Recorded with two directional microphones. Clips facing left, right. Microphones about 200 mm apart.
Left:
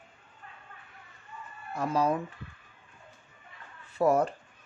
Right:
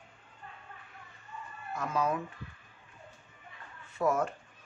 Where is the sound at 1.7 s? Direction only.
35° left (ahead or behind).